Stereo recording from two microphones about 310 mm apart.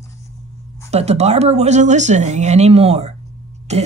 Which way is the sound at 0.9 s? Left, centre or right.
Right.